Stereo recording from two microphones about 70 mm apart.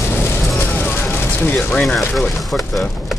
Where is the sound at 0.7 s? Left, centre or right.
Left.